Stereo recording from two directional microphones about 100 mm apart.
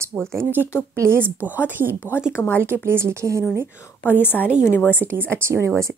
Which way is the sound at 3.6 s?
25° left (ahead or behind).